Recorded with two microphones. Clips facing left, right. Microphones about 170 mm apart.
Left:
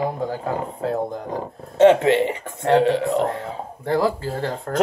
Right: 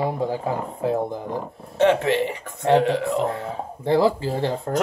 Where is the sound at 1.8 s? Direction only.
20° left (ahead or behind).